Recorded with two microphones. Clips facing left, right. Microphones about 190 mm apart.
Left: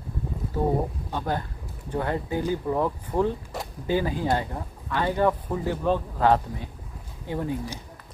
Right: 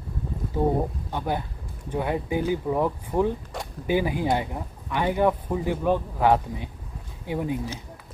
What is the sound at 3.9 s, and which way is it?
Speech, 15° right (ahead or behind).